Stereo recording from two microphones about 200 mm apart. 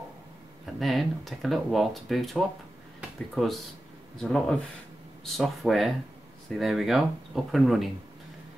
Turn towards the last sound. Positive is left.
turn(degrees=0)  # may be behind; listen again after turning